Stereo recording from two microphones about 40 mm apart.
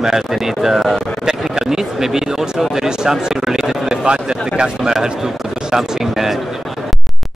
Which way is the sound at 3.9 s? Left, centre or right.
Right.